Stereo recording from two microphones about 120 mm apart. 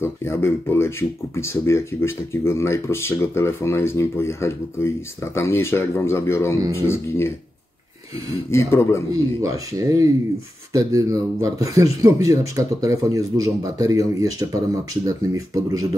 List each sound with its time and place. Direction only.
0.0 s speech: 20° left (ahead or behind)
8.5 s speech: 25° left (ahead or behind)
9.1 s speech: 25° right (ahead or behind)
15.0 s speech: 30° right (ahead or behind)